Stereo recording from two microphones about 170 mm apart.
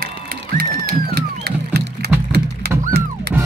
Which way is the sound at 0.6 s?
60° right (ahead or behind).